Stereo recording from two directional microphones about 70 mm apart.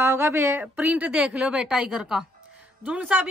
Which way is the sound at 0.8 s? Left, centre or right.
Centre.